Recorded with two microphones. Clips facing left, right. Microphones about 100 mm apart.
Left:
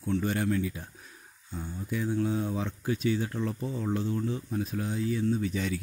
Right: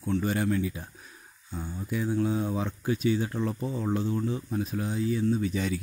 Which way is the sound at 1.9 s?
10° right (ahead or behind).